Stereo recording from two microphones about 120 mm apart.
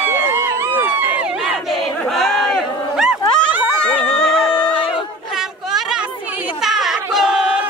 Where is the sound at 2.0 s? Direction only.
Centre (ahead or behind).